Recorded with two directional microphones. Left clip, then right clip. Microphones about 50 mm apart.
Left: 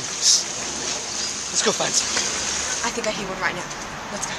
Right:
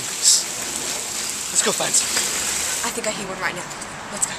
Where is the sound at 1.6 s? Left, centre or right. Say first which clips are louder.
Even; centre.